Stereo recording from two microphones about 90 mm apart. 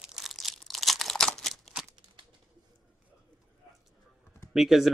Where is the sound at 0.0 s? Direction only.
5° right (ahead or behind).